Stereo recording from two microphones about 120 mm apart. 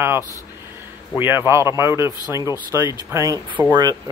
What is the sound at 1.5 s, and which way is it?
Speech, 25° right (ahead or behind).